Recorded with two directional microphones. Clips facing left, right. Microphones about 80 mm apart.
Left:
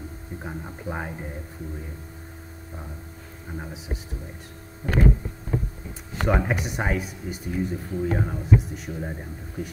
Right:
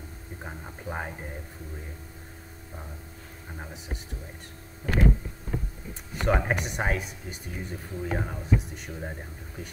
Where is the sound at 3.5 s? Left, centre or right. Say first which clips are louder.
Left 5 dB; centre.